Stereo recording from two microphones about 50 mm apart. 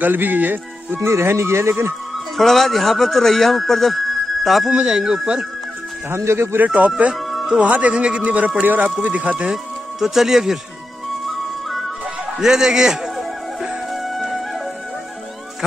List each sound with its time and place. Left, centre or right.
0.0 s speech: right
0.9 s speech: right
2.3 s speech: centre
4.8 s a man's voice: centre
6.0 s speech: right
6.6 s a man's voice: right
8.2 s a man's voice: right
9.5 s speech: centre
12.4 s a man's voice: centre
14.0 s music: centre